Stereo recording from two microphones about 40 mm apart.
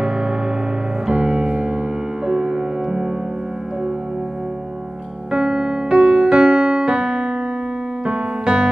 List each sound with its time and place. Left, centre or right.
0.0 s music: right
5.3 s music: centre
8.0 s piano: right